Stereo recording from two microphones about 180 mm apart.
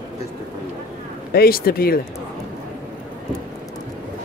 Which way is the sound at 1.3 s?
60° left (ahead or behind).